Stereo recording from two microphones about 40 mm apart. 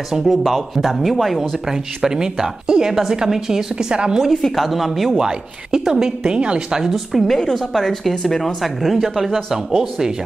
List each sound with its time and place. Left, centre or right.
0.1 s speech: centre
1.7 s a woman's voice: centre
4.3 s speech: centre
5.1 s a woman's voice: centre
6.8 s a woman's voice: centre
7.2 s speech: centre
7.5 s speech: centre
8.6 s a woman's voice: centre